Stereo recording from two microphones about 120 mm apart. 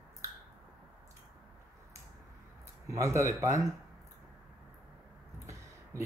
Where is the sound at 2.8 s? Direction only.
25° right (ahead or behind).